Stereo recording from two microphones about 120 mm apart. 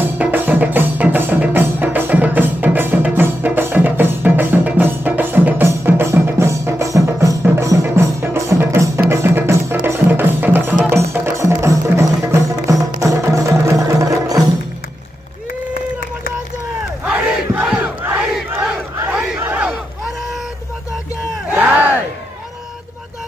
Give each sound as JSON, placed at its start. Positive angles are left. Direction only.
{"t": 0.2, "sound": "music", "side_deg": -15}
{"t": 17.0, "sound": "crowd", "side_deg": -10}
{"t": 18.2, "sound": "battle cry", "side_deg": -10}
{"t": 21.5, "sound": "crowd", "side_deg": -15}